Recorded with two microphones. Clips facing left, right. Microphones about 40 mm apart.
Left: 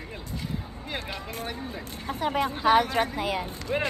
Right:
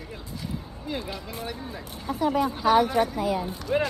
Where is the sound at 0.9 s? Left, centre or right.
Left.